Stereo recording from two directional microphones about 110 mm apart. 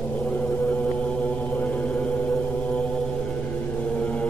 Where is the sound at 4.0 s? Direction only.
10° left (ahead or behind).